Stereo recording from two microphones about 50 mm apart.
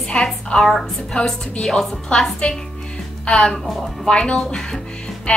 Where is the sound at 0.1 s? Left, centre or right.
Centre.